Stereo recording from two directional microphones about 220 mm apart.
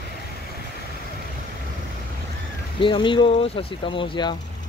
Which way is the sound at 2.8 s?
25° left (ahead or behind).